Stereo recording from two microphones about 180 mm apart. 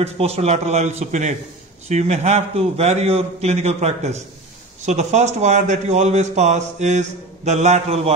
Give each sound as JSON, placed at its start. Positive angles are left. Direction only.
{"t": 0.0, "sound": "a man's voice", "side_deg": -35}